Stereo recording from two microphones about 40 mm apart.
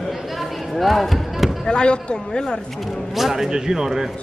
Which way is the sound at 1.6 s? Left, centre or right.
Left.